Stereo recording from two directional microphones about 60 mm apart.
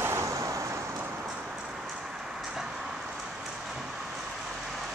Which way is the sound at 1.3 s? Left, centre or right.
Centre.